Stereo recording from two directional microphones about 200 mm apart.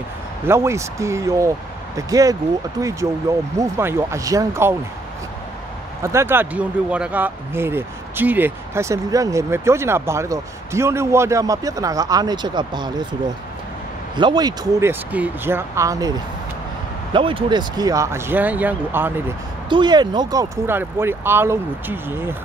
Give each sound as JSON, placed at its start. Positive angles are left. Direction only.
{"t": 0.5, "sound": "speech", "side_deg": -15}
{"t": 6.0, "sound": "speech", "side_deg": -10}
{"t": 14.1, "sound": "speech", "side_deg": -20}
{"t": 17.1, "sound": "speech", "side_deg": -25}
{"t": 19.7, "sound": "speech", "side_deg": -20}